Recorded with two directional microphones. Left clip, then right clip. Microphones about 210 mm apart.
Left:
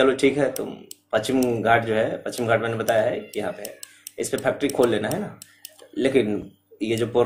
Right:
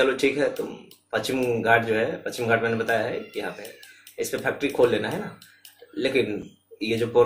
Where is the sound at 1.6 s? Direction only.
35° left (ahead or behind).